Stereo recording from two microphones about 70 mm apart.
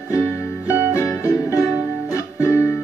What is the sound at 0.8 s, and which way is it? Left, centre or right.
Music, left.